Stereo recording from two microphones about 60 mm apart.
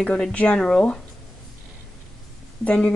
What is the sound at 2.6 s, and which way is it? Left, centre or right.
Speech, centre.